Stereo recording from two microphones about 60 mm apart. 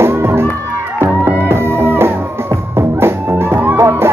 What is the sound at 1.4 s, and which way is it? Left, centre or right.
Music, right.